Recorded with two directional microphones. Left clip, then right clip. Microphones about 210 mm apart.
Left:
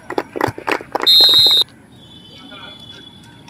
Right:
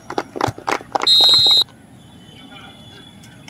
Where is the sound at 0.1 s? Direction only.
40° left (ahead or behind).